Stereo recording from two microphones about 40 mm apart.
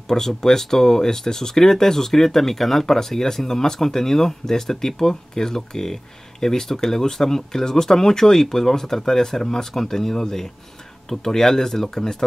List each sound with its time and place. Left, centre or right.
0.1 s speech: centre